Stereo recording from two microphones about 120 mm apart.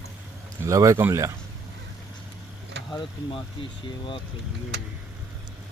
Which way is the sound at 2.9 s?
40° left (ahead or behind).